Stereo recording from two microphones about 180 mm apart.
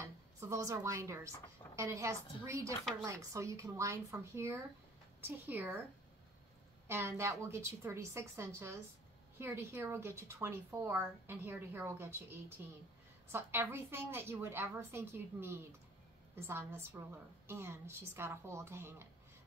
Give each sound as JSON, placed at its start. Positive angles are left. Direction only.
{"t": 0.0, "sound": "a woman's voice", "side_deg": -15}
{"t": 6.9, "sound": "speech", "side_deg": -15}